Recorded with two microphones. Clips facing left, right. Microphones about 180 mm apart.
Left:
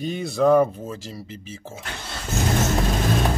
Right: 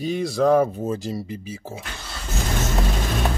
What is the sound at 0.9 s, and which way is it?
Speech, 15° right (ahead or behind).